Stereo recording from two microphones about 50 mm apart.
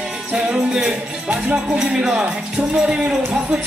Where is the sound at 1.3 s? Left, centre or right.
Right.